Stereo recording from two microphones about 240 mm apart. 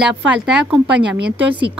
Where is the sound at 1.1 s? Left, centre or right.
Right.